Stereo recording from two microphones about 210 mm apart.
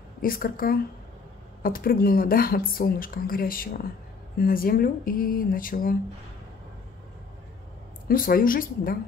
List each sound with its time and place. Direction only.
0.2 s speech: 45° left (ahead or behind)
8.1 s speech: 45° left (ahead or behind)